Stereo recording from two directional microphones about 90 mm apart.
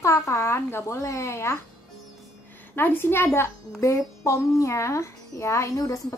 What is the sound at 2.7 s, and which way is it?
A child's voice, 25° left (ahead or behind).